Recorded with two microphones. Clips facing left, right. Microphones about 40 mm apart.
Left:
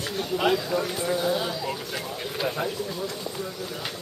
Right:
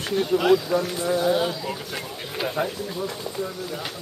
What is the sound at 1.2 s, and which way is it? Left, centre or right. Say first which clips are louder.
Speech: right 3 dB; centre.